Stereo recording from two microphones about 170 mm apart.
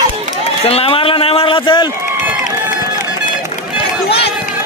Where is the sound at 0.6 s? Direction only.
35° left (ahead or behind).